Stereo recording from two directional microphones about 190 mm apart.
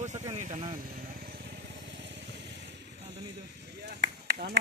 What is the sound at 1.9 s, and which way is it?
Vehicle, 70° right (ahead or behind).